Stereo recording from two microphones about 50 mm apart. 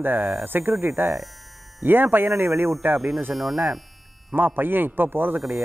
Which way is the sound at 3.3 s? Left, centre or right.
Centre.